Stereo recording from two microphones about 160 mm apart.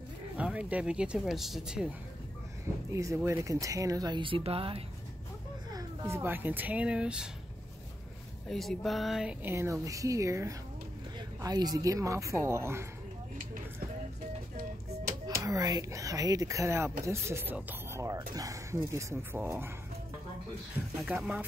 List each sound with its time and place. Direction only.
0.4 s speech: 10° right (ahead or behind)
2.9 s speech: 20° right (ahead or behind); by 4.8 s 35° right (ahead or behind)
5.7 s speech: 20° right (ahead or behind)
8.5 s a woman's voice: centre (ahead or behind); by 12.8 s 15° right (ahead or behind)
15.4 s speech: 20° right (ahead or behind)
21.0 s speech: 5° right (ahead or behind)